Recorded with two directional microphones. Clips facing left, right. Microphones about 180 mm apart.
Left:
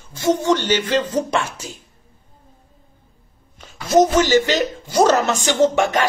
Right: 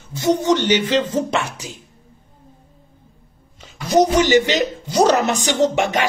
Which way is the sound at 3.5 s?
25° right (ahead or behind).